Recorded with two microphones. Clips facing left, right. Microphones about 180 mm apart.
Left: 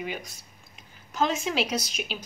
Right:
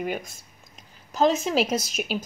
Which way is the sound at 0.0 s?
50° right (ahead or behind).